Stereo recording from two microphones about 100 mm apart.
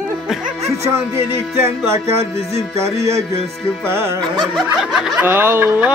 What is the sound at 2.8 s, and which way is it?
Music, 30° right (ahead or behind).